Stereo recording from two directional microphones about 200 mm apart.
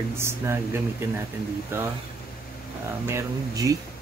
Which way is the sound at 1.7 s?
10° right (ahead or behind).